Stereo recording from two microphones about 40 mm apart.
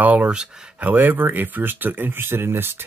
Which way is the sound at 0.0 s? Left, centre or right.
Right.